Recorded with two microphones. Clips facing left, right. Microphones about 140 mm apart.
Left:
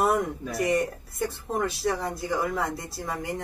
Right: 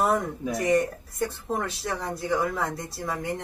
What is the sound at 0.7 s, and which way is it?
Speech, centre (ahead or behind).